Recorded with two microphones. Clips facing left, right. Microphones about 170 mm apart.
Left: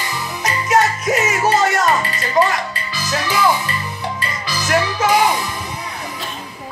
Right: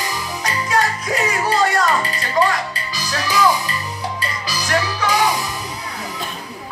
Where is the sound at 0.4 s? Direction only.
20° left (ahead or behind).